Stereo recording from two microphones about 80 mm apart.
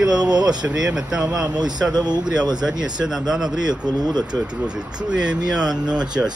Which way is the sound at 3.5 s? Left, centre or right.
Right.